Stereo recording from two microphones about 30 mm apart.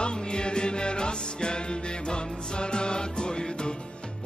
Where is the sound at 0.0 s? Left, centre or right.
Left.